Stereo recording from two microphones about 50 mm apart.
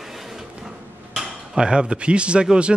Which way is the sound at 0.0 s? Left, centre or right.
Centre.